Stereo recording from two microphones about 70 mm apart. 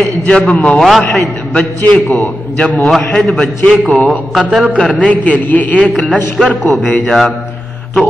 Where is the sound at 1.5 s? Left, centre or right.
Centre.